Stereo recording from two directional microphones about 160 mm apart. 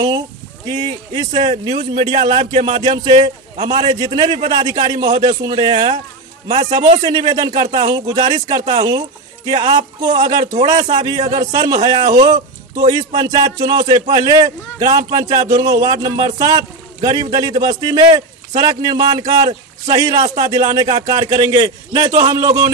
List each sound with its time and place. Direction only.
0.7 s a man's voice: 30° right (ahead or behind)
7.0 s speech: 25° right (ahead or behind)